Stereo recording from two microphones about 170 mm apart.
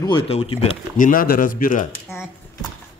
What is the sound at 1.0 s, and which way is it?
Speech, 55° left (ahead or behind).